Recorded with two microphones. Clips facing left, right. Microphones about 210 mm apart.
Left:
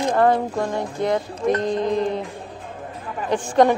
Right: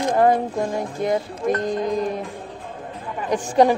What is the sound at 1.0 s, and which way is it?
Speech, 20° left (ahead or behind).